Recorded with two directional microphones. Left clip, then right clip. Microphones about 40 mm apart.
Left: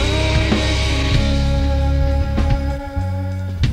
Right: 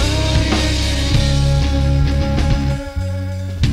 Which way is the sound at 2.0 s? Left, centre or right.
Left.